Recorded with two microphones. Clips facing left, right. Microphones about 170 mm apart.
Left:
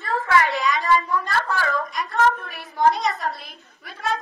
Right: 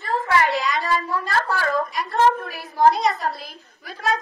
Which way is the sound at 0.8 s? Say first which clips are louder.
Left 3 dB; 40° right (ahead or behind).